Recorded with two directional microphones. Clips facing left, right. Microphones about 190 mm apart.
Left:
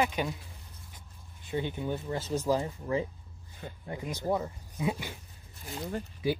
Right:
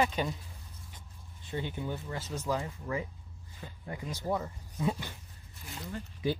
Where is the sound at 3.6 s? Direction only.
55° left (ahead or behind).